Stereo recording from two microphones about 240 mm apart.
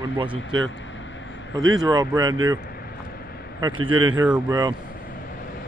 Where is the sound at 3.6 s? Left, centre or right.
Centre.